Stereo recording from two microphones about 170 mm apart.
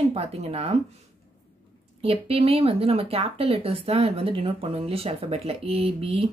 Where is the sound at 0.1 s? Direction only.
35° right (ahead or behind).